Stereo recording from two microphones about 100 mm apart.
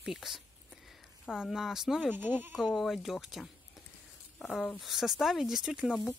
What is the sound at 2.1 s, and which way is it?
Speech, 20° right (ahead or behind).